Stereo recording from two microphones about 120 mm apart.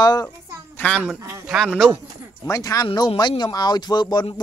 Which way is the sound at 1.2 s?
25° right (ahead or behind).